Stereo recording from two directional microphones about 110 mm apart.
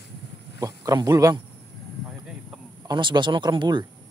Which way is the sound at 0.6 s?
30° right (ahead or behind).